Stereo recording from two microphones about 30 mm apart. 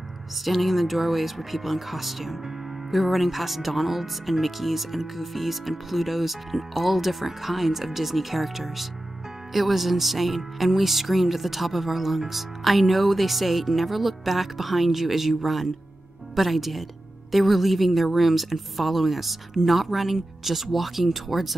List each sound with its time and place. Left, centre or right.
0.5 s speech: centre